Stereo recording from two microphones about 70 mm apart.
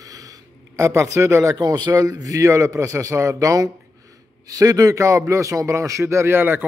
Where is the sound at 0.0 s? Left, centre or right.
Right.